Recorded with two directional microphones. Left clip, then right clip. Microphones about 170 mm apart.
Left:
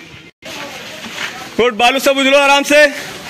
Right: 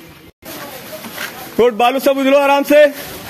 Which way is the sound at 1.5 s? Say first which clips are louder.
Even; 15° right (ahead or behind).